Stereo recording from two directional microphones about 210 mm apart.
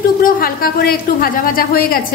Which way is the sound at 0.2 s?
45° left (ahead or behind).